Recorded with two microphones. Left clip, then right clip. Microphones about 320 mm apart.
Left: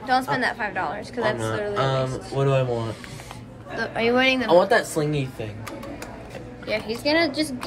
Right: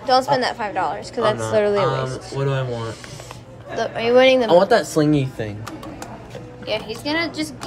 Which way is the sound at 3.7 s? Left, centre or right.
Centre.